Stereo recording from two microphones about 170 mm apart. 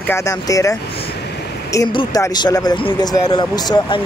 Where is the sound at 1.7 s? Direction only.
25° left (ahead or behind).